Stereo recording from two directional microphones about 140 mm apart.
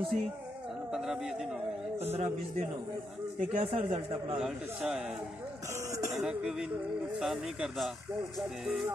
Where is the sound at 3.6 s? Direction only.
45° right (ahead or behind).